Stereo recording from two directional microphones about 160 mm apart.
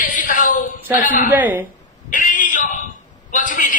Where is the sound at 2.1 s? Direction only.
55° left (ahead or behind).